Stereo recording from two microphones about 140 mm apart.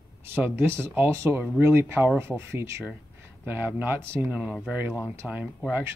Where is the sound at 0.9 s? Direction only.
20° right (ahead or behind).